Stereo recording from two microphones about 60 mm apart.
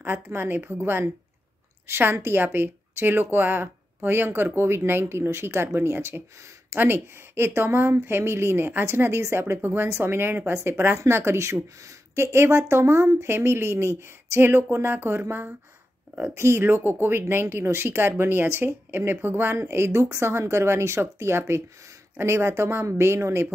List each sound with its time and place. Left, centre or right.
0.0 s a woman's voice: right